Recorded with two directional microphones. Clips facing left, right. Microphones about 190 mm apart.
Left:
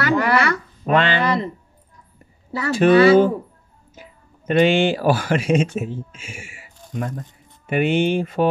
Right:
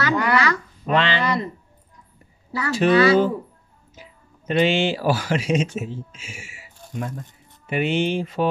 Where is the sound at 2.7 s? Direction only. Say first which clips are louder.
Left 4 dB; 50° left (ahead or behind).